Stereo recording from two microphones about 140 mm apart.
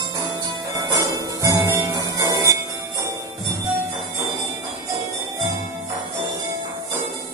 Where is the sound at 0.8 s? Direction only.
25° right (ahead or behind).